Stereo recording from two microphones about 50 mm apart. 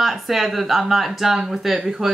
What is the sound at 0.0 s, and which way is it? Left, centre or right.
Speech, centre.